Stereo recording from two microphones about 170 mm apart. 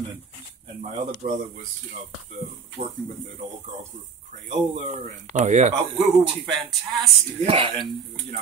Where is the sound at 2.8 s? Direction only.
45° right (ahead or behind).